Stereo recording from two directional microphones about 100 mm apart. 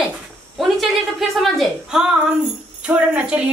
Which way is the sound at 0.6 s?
Centre (ahead or behind).